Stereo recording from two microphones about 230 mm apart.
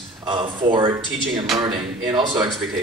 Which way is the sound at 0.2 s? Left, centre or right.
Right.